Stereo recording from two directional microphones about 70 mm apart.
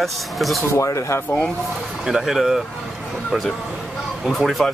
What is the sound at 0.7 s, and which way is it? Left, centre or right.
Speech, left.